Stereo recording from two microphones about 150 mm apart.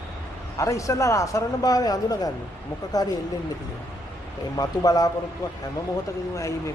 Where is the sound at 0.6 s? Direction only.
20° left (ahead or behind).